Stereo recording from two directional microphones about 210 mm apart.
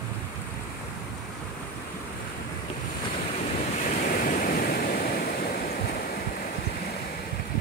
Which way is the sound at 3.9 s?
40° left (ahead or behind).